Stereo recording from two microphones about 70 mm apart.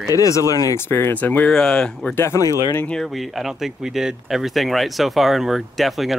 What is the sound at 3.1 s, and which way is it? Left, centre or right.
Speech, centre.